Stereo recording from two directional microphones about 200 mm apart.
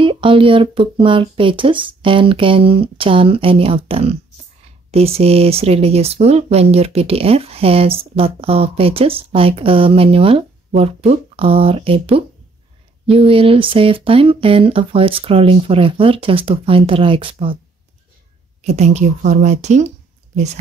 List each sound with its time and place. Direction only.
0.0 s speech: 25° right (ahead or behind)
18.6 s a woman's voice: 35° right (ahead or behind)